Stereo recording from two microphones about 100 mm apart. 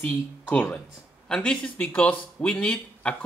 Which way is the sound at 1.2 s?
5° left (ahead or behind).